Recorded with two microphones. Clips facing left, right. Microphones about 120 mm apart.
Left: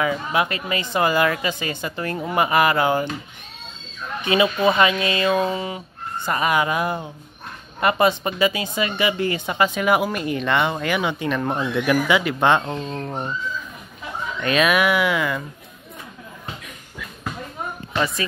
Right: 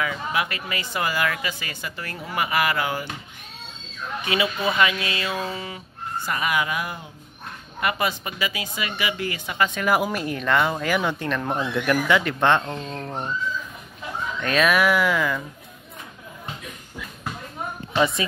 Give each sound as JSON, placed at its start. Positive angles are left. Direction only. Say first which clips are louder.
{"t": 0.0, "sound": "speech", "louder": "left 4 dB", "side_deg": 25}
{"t": 4.2, "sound": "speech", "louder": "left 6 dB", "side_deg": 30}
{"t": 9.8, "sound": "speech", "louder": "left 2 dB", "side_deg": 0}
{"t": 14.4, "sound": "speech", "louder": "left 1 dB", "side_deg": 5}